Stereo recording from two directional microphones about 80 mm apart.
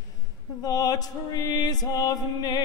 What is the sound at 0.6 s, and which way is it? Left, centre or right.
Music, left.